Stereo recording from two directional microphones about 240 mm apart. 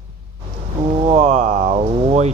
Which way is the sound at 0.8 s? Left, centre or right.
Right.